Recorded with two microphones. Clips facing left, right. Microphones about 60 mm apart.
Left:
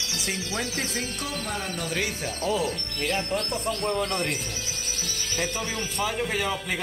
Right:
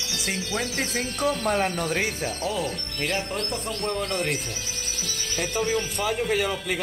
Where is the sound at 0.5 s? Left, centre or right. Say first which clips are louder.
Right 3 dB; centre.